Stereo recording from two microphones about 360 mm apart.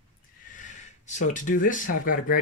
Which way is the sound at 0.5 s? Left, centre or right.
Centre.